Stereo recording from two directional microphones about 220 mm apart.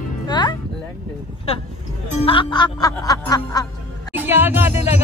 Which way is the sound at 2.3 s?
20° left (ahead or behind).